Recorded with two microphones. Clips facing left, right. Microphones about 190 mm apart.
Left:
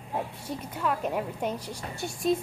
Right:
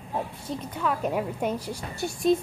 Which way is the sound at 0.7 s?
Centre (ahead or behind).